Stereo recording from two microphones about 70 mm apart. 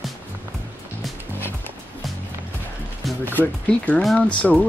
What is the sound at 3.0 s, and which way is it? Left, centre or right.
Music, centre.